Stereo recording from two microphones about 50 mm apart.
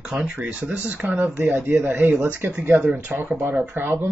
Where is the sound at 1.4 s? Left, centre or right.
Right.